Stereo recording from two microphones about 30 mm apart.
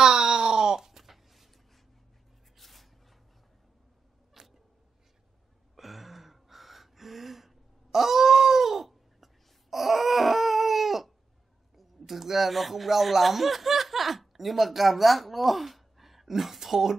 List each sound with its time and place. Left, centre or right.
0.0 s groan: right
0.7 s a sound: centre
2.5 s a sound: centre
4.4 s creak: centre
5.8 s gasp: centre
11.7 s speech: centre